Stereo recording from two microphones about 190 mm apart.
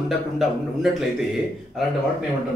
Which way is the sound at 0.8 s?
Centre (ahead or behind).